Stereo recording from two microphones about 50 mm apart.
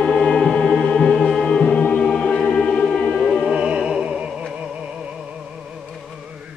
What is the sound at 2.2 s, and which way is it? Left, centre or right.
Music, centre.